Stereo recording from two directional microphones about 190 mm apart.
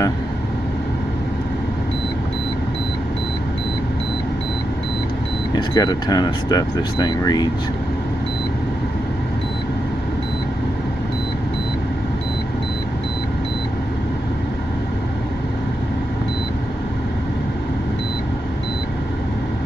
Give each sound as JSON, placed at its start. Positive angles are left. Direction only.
{"t": 5.5, "sound": "speech", "side_deg": 20}